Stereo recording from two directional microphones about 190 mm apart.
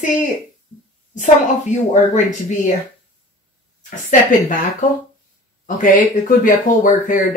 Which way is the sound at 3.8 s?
40° left (ahead or behind).